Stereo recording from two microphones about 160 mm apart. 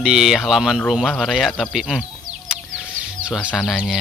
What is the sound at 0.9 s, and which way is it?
Bird, centre (ahead or behind).